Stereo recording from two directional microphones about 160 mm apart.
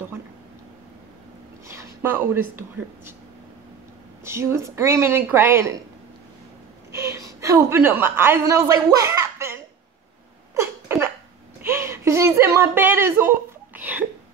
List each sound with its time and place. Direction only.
1.7 s speech: 15° right (ahead or behind)
4.2 s speech: 15° right (ahead or behind)
6.9 s a woman's voice: 20° right (ahead or behind)
10.5 s a sound: 15° right (ahead or behind)
13.7 s hiccup: 10° right (ahead or behind)